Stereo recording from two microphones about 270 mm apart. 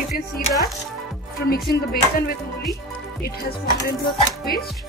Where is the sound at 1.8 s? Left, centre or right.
Left.